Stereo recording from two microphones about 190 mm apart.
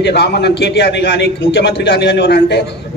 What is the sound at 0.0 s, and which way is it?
A man's voice, 60° left (ahead or behind).